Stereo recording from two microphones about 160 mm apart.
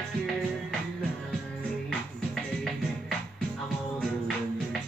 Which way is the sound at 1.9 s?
5° left (ahead or behind).